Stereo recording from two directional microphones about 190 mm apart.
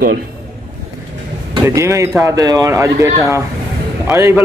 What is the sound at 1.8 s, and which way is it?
A man's voice, 15° right (ahead or behind).